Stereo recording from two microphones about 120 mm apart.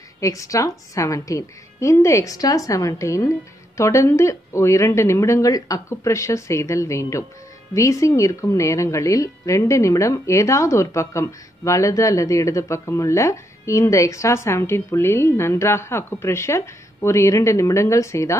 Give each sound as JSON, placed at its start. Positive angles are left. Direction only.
{"t": 0.2, "sound": "a woman's voice", "side_deg": 25}